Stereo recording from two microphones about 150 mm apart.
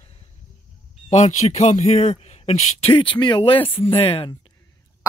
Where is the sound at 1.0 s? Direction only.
50° left (ahead or behind).